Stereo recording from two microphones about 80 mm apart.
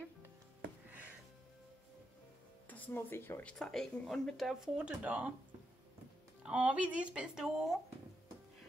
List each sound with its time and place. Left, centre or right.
2.7 s speech: left
3.4 s speech: centre
4.7 s speech: centre
6.4 s speech: centre